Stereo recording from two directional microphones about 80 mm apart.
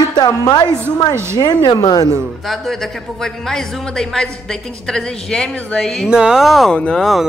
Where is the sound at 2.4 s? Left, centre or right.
Centre.